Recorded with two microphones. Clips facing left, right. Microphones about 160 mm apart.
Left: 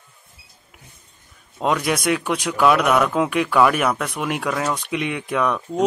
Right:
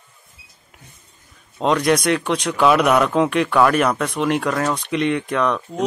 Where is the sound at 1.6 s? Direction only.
5° left (ahead or behind).